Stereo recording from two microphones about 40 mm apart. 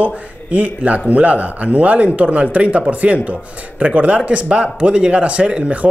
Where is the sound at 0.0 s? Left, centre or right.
Right.